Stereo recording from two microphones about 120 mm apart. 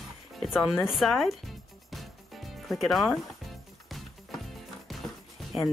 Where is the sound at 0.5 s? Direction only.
5° right (ahead or behind).